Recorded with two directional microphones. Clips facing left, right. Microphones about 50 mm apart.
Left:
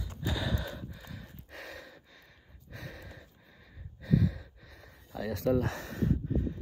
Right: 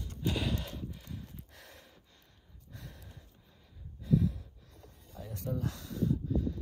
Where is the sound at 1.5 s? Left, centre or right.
Left.